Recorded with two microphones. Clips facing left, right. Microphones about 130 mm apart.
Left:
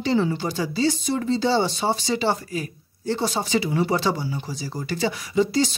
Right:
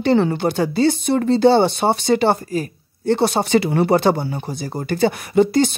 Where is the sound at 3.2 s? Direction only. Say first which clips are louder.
Right 6 dB; 65° right (ahead or behind).